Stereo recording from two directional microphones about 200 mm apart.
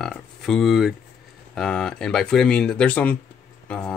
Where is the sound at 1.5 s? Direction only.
5° left (ahead or behind).